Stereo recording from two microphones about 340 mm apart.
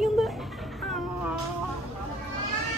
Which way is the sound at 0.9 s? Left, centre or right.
Centre.